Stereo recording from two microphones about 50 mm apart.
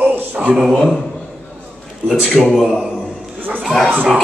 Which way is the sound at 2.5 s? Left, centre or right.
Centre.